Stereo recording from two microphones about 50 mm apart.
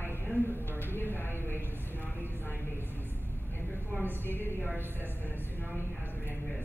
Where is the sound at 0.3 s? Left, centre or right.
Left.